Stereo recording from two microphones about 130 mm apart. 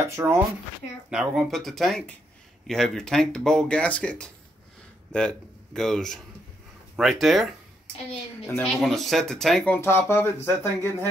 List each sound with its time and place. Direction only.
0.0 s speech: 20° right (ahead or behind)
1.1 s speech: 5° right (ahead or behind)
8.6 s speech: centre (ahead or behind)
9.8 s speech: 20° left (ahead or behind)